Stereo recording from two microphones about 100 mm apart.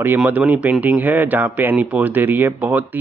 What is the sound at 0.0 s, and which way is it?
Speech, 15° right (ahead or behind).